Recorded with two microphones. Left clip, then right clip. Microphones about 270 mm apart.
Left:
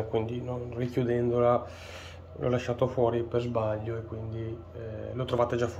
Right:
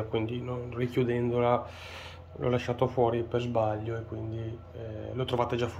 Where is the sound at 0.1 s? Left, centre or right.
Centre.